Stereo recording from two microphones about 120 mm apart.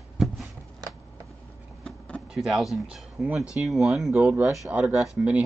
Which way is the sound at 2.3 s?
5° right (ahead or behind).